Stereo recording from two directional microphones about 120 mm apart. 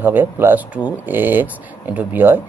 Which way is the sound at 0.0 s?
15° right (ahead or behind).